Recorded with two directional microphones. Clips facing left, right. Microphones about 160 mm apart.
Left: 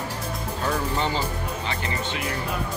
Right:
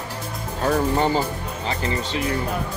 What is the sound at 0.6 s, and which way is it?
Speech, 45° right (ahead or behind).